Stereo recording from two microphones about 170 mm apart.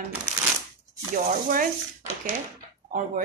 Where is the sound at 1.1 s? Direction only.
55° right (ahead or behind).